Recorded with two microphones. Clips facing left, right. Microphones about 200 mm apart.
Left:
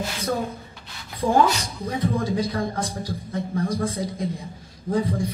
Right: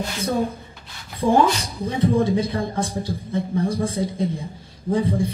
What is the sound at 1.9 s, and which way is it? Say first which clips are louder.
A man's voice: right 5 dB; 30° right (ahead or behind).